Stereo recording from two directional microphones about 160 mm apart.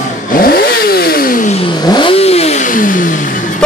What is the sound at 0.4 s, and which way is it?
Motorcycle, 70° left (ahead or behind).